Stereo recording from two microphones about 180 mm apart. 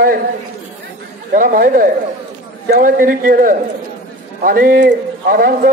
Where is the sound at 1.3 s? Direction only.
50° right (ahead or behind).